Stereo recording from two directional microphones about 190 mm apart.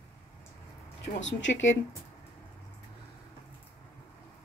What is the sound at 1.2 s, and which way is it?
Speech, 75° left (ahead or behind).